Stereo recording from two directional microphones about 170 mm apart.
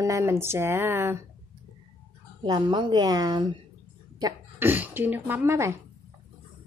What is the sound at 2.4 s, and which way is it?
A woman's voice, 25° right (ahead or behind).